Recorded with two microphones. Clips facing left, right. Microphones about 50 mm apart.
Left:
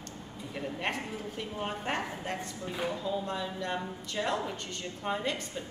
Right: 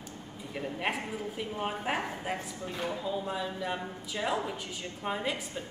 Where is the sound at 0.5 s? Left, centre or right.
Centre.